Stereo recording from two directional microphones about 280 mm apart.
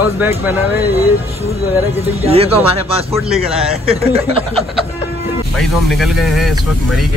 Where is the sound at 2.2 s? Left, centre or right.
Right.